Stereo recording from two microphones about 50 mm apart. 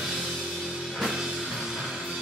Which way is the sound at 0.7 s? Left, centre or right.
Centre.